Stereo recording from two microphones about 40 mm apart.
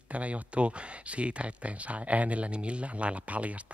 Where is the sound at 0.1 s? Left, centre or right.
Right.